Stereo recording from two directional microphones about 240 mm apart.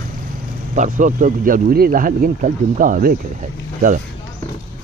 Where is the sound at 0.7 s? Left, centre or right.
Right.